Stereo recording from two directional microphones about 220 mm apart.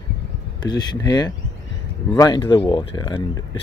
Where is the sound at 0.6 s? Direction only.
20° left (ahead or behind).